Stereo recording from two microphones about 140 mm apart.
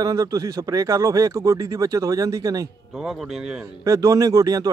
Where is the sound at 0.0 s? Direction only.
25° right (ahead or behind).